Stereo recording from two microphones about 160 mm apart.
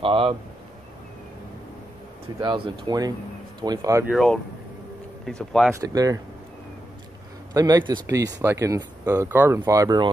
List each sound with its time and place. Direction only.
0.0 s speech: 35° right (ahead or behind)
2.4 s speech: 35° right (ahead or behind)
4.1 s speech: centre (ahead or behind)
5.7 s speech: 20° right (ahead or behind)
7.5 s speech: 25° right (ahead or behind)